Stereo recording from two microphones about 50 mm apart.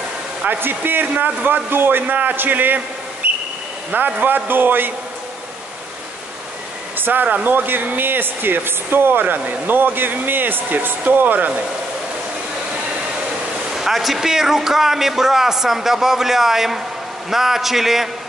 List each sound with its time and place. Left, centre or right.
0.5 s speech: right
7.0 s speech: right
13.7 s a man's voice: centre